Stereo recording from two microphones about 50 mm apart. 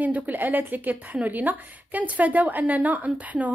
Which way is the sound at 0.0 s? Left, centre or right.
Right.